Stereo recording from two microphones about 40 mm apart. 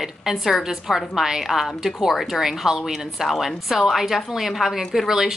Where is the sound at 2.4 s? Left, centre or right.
Centre.